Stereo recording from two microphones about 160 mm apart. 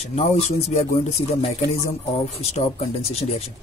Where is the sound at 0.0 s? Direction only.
40° left (ahead or behind).